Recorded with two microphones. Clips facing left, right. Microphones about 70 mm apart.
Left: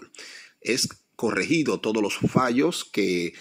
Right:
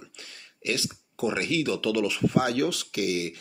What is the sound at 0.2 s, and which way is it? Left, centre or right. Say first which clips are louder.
Speech: left 1 dB; centre.